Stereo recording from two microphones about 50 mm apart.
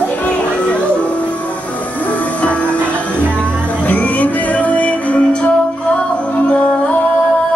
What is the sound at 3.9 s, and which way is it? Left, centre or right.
Music, left.